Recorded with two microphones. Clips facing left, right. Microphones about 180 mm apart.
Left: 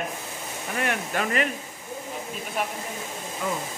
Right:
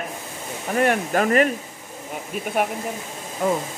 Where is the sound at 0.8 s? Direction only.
45° right (ahead or behind).